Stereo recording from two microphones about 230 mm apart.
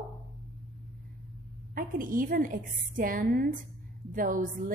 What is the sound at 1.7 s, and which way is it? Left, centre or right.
A woman's voice, right.